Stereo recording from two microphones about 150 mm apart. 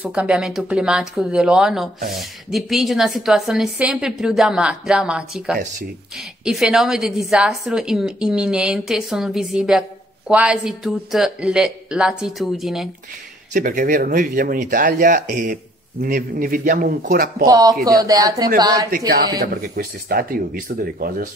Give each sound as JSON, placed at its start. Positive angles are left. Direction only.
{"t": 0.0, "sound": "a woman's voice", "side_deg": -10}
{"t": 13.5, "sound": "speech", "side_deg": -60}
{"t": 17.5, "sound": "speech", "side_deg": -25}
{"t": 19.4, "sound": "speech", "side_deg": -80}